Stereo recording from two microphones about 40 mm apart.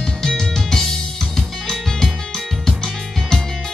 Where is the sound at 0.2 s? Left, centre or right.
Centre.